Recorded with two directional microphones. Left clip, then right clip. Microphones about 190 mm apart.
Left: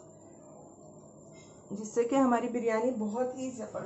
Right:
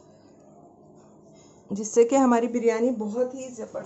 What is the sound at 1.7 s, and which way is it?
A woman's voice, 50° right (ahead or behind).